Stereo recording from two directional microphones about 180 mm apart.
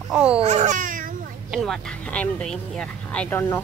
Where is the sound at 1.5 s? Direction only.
Centre (ahead or behind).